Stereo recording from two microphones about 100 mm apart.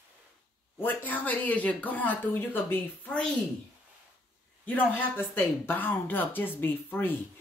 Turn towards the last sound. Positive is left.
turn(degrees=20)  # may be behind; listen again after turning